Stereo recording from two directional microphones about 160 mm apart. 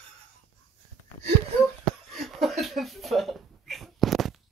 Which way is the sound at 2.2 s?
Centre (ahead or behind).